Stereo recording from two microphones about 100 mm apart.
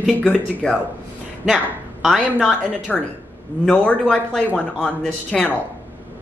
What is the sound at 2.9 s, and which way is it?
Speech, 5° left (ahead or behind).